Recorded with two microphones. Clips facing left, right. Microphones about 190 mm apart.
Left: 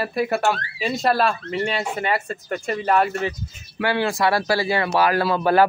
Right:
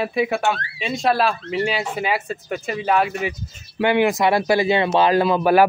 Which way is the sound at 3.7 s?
20° right (ahead or behind).